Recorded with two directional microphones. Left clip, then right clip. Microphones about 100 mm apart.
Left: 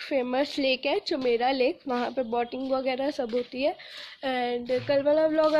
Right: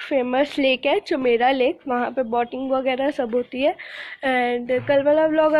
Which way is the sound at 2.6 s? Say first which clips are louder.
Right 6 dB; 20° left (ahead or behind).